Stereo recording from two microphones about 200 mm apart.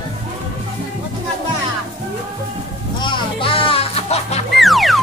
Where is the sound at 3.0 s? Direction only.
25° left (ahead or behind).